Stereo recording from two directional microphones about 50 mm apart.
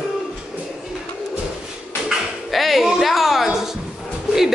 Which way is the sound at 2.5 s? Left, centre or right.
Centre.